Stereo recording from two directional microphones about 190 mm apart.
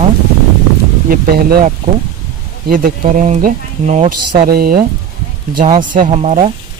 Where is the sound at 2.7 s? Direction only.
45° right (ahead or behind).